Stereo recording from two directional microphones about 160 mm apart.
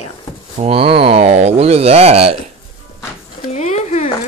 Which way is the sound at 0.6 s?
35° right (ahead or behind).